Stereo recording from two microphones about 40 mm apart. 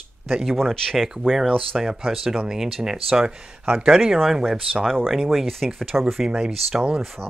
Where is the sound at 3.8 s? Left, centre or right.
Centre.